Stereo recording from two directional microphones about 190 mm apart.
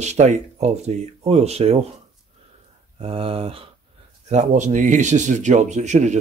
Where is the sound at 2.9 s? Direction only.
30° right (ahead or behind).